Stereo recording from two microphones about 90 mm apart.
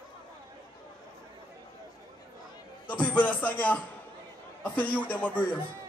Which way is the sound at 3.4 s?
15° left (ahead or behind).